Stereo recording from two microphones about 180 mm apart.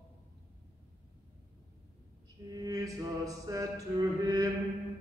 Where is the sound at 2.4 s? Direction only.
20° right (ahead or behind).